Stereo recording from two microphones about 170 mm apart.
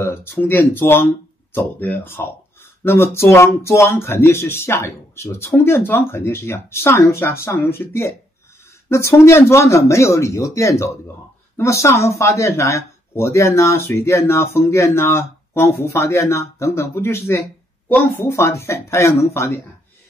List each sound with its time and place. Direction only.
0.0 s speech: 15° left (ahead or behind)